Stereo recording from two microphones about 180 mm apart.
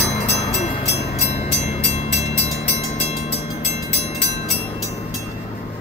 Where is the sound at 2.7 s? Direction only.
35° left (ahead or behind).